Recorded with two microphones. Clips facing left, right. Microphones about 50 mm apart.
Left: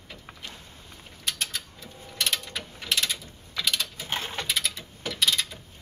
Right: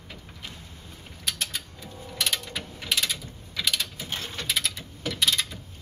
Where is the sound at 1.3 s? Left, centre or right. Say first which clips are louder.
Even; centre.